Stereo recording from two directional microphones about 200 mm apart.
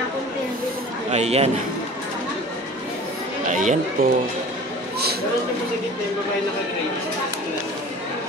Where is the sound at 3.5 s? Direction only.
40° right (ahead or behind).